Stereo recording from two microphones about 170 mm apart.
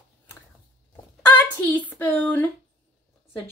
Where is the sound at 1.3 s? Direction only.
10° left (ahead or behind).